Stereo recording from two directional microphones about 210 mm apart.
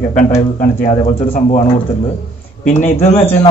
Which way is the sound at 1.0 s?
25° left (ahead or behind).